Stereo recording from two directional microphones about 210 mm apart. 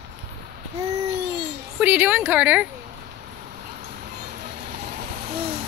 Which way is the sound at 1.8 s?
5° right (ahead or behind).